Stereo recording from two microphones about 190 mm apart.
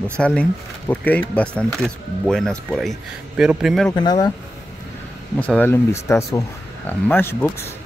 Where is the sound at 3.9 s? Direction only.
20° left (ahead or behind).